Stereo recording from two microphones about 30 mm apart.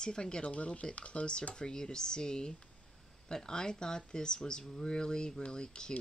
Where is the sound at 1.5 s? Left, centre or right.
Left.